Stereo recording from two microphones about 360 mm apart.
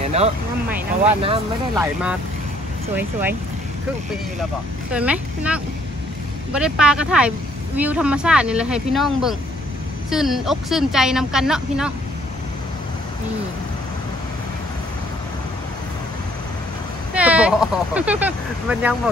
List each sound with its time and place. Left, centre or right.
0.0 s vehicle: centre
1.2 s speech: centre
3.0 s speech: centre
4.9 s speech: centre
17.1 s speech: centre